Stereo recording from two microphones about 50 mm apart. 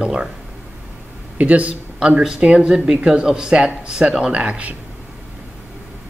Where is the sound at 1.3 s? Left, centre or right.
Right.